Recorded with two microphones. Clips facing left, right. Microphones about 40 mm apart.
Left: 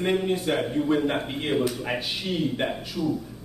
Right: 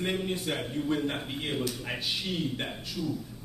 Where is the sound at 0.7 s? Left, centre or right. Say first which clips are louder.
Left 5 dB; centre.